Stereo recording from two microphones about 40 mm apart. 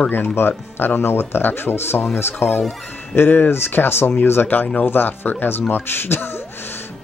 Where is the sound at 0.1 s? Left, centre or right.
Left.